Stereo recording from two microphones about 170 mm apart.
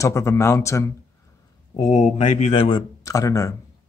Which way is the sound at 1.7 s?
40° left (ahead or behind).